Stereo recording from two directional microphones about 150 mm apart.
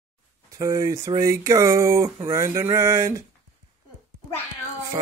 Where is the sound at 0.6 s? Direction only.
20° right (ahead or behind).